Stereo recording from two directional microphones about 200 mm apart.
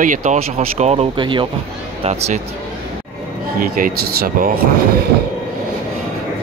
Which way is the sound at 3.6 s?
45° right (ahead or behind).